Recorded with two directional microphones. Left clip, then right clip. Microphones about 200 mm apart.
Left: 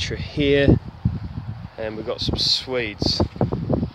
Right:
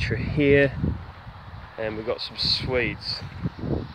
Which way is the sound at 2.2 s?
65° left (ahead or behind).